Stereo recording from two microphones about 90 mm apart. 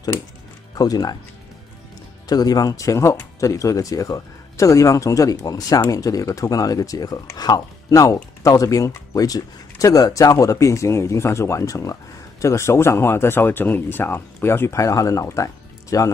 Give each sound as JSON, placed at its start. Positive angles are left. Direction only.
{"t": 0.7, "sound": "speech", "side_deg": 45}
{"t": 2.2, "sound": "speech", "side_deg": 45}